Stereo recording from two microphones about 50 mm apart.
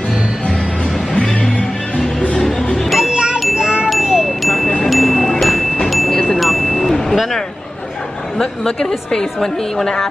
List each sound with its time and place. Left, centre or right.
1.1 s music: centre
3.0 s a sound: centre
3.5 s wind chime: centre
4.8 s mallet percussion: centre
6.3 s chime: centre
8.4 s a woman's voice: centre